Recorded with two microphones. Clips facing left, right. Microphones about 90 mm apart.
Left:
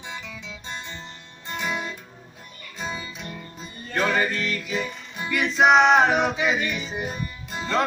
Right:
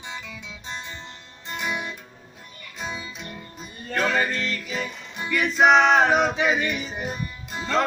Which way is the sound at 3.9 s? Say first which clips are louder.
Even; 10° left (ahead or behind).